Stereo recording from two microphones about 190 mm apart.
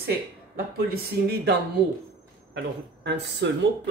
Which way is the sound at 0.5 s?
55° right (ahead or behind).